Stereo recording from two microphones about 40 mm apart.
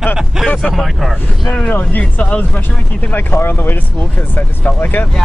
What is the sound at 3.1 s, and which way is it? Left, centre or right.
Speech, left.